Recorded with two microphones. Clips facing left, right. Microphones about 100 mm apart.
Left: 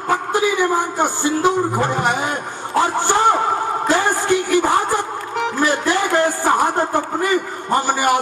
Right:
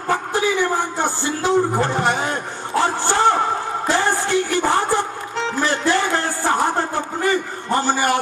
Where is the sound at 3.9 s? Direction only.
15° left (ahead or behind).